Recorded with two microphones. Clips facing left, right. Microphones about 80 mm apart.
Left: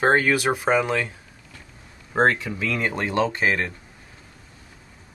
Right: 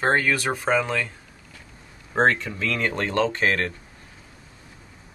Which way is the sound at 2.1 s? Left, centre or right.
Centre.